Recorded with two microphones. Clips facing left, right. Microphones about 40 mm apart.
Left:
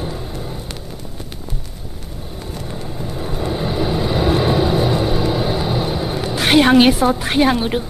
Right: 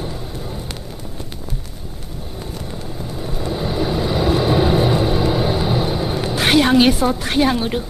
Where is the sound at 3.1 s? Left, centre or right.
Centre.